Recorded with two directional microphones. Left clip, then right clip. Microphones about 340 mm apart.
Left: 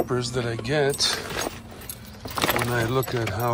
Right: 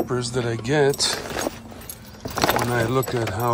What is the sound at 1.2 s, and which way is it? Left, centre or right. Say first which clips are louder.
Dog: right 2 dB; right.